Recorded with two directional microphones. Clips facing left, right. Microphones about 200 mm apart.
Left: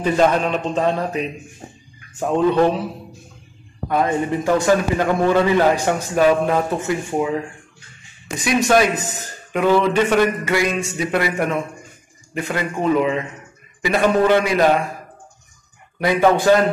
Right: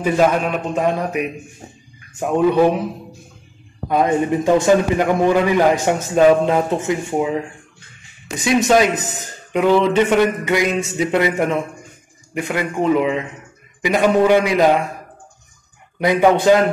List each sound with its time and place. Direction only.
0.0 s a man's voice: 10° right (ahead or behind)
3.9 s a man's voice: 20° right (ahead or behind)
16.0 s a man's voice: 20° right (ahead or behind)